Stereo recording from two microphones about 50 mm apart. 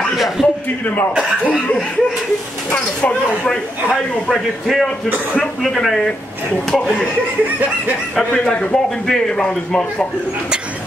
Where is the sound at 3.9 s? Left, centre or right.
Centre.